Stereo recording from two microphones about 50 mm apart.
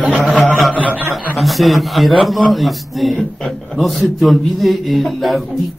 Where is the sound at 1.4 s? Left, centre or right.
Centre.